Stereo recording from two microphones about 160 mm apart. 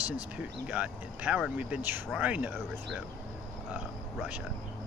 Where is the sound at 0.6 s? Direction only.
10° right (ahead or behind).